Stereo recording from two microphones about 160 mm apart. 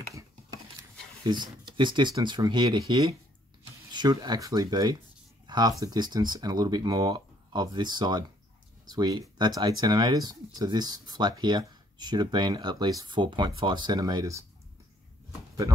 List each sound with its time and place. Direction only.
1.2 s speech: 30° right (ahead or behind)